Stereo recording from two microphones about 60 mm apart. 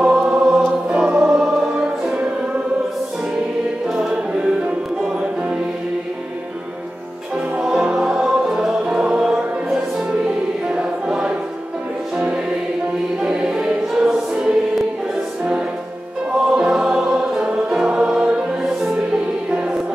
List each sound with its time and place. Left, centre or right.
0.0 s choir: centre
0.8 s choir: right
4.3 s music: centre
7.9 s music: centre
10.7 s choir: centre
13.2 s music: centre
16.3 s music: centre